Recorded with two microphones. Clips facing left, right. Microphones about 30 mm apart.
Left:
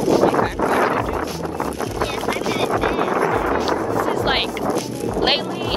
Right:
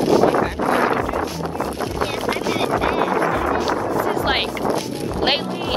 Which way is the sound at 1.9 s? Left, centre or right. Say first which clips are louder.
Even; centre.